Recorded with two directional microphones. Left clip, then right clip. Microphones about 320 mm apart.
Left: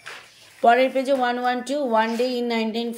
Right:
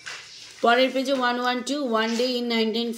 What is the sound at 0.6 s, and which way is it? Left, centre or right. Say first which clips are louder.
Speech: left 3 dB; centre.